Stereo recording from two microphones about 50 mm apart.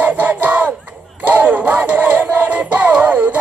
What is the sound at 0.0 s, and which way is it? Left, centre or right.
Battle cry, right.